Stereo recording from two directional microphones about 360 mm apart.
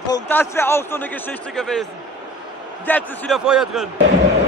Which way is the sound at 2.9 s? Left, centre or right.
Centre.